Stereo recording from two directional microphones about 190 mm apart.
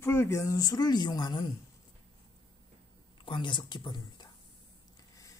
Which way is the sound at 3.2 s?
25° left (ahead or behind).